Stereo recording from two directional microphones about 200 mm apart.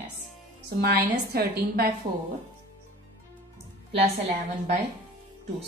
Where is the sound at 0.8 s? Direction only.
50° right (ahead or behind).